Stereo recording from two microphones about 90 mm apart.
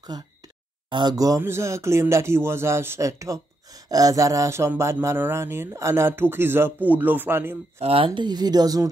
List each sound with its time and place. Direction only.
0.1 s a woman's voice: 50° right (ahead or behind)
0.8 s speech: 65° right (ahead or behind)
1.1 s speech: 40° right (ahead or behind)
1.4 s speech: 30° right (ahead or behind)
7.9 s a woman's voice: 75° right (ahead or behind); by 8.8 s 45° right (ahead or behind)